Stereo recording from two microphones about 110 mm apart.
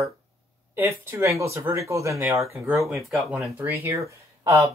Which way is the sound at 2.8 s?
Centre (ahead or behind).